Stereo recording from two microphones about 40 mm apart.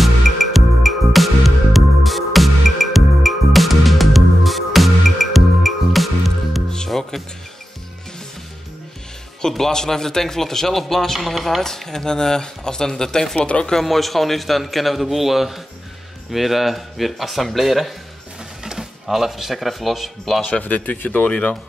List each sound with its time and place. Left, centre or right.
0.0 s music: centre
9.5 s speech: centre
11.1 s a man's voice: centre
11.6 s speech: centre
13.5 s speech: left
13.7 s a man's voice: centre
18.6 s speech: centre
20.6 s speech: left